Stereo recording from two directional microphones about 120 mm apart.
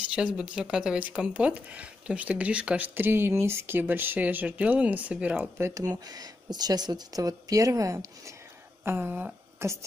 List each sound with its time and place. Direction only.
0.1 s speech: 5° right (ahead or behind)
5.8 s speech: 30° right (ahead or behind)